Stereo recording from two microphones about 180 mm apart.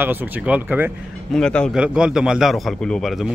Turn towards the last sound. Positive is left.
turn(degrees=0)  # may be behind; listen again after turning